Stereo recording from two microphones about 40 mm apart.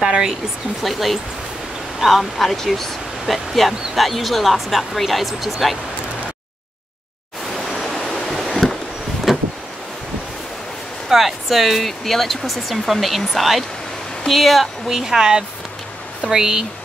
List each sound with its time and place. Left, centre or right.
0.0 s speech: centre
0.8 s speech: centre
7.6 s pink noise: centre
9.3 s vehicle: centre
11.1 s speech: centre